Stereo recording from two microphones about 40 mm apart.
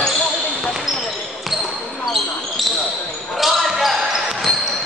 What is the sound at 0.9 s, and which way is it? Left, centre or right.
Basketball bounce, centre.